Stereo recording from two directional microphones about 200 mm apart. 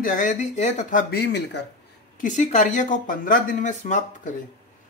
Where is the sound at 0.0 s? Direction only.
40° left (ahead or behind); by 1.7 s 55° left (ahead or behind).